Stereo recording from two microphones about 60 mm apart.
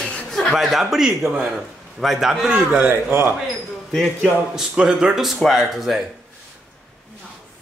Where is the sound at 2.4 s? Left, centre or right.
Right.